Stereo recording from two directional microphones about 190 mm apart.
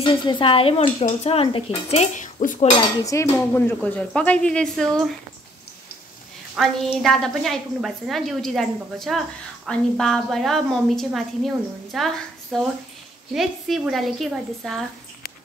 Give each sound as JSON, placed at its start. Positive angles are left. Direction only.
{"t": 0.0, "sound": "dishes", "side_deg": 30}
{"t": 3.1, "sound": "a woman's voice", "side_deg": 15}
{"t": 6.5, "sound": "a woman's voice", "side_deg": 0}